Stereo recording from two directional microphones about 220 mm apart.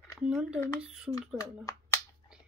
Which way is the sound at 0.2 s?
5° right (ahead or behind).